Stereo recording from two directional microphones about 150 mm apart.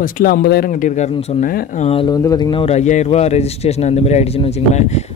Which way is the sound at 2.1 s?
25° left (ahead or behind).